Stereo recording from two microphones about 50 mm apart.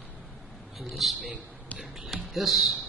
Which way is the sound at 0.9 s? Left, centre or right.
Centre.